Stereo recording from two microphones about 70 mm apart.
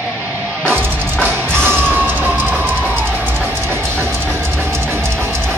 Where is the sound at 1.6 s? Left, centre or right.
Right.